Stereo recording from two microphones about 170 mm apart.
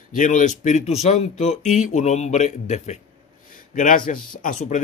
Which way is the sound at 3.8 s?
50° left (ahead or behind).